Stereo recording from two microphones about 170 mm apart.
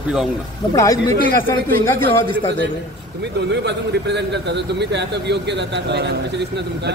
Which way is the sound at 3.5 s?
90° right.